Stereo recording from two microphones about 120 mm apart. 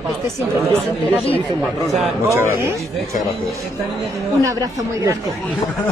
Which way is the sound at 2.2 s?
25° right (ahead or behind).